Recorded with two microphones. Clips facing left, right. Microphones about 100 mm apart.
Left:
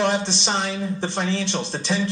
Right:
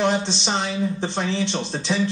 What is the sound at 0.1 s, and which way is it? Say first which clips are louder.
Speech: even; 15° left (ahead or behind).